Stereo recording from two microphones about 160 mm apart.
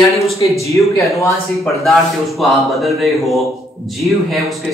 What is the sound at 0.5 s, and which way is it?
Speech, 20° left (ahead or behind).